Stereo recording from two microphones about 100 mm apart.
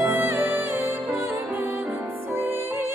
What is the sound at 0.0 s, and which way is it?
Music, 20° right (ahead or behind).